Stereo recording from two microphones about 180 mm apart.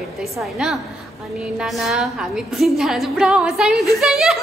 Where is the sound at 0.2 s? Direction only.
Centre (ahead or behind).